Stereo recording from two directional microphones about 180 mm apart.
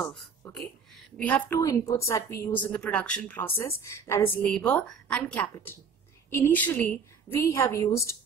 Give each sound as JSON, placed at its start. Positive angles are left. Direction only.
{"t": 1.1, "sound": "a woman's voice", "side_deg": 5}